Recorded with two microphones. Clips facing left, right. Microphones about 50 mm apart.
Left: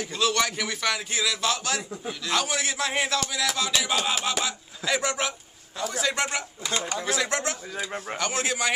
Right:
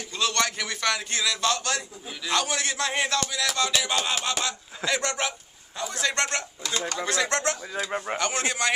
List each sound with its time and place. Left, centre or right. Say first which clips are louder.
0.1 s a man's voice: even; centre
6.6 s speech: left 2 dB; centre
7.0 s a man's voice: right 3 dB; centre